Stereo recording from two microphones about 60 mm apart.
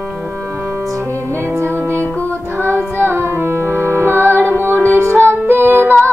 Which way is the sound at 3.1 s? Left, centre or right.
Right.